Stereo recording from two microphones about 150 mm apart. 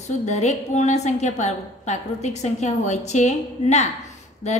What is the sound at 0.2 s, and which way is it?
A woman's voice, 50° left (ahead or behind).